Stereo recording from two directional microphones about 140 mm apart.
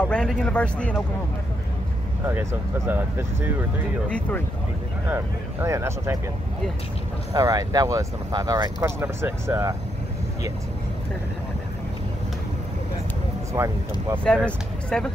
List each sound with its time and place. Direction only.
0.0 s a man's voice: 5° left (ahead or behind)
2.2 s speech: 15° right (ahead or behind)
5.0 s speech: 15° right (ahead or behind)
7.3 s speech: 25° right (ahead or behind)
13.5 s speech: 20° right (ahead or behind)
14.2 s speech: 5° left (ahead or behind)